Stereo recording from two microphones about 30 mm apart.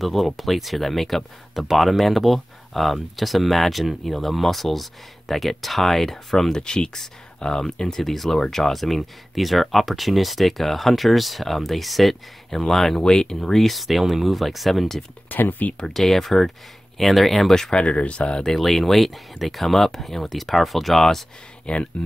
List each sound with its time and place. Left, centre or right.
0.0 s speech: centre
6.5 s speech: left
8.0 s speech: centre
12.4 s speech: centre
13.0 s speech: left
13.6 s speech: centre
15.2 s speech: left
15.9 s speech: centre
17.8 s speech: left
18.6 s speech: centre
21.7 s speech: left